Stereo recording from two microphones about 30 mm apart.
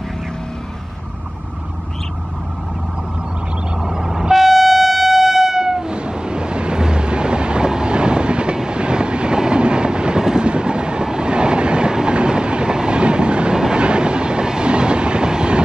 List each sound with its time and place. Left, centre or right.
3.8 s vehicle: centre
4.4 s train: centre
5.9 s ocean: right
8.5 s train: right